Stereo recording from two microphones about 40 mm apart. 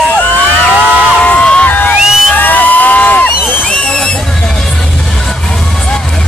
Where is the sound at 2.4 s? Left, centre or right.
Left.